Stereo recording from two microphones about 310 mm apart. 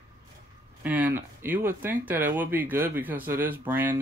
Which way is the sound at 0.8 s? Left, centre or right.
Centre.